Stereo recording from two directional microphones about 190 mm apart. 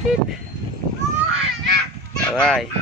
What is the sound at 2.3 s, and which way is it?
Speech, centre (ahead or behind).